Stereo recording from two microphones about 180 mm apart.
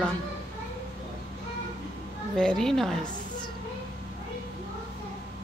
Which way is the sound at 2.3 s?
5° left (ahead or behind).